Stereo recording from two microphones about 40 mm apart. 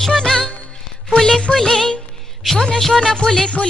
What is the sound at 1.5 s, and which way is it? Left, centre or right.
Music, centre.